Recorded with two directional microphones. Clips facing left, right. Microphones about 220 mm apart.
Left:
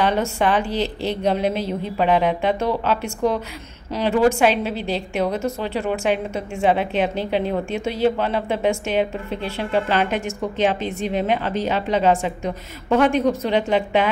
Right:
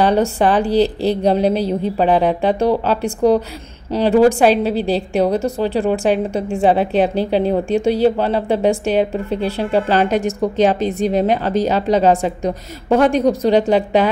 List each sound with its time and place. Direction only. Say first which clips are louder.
0.0 s a woman's voice: right 5 dB; 35° right (ahead or behind)